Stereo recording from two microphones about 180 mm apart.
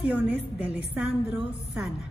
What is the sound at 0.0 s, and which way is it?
A woman's voice, 10° right (ahead or behind).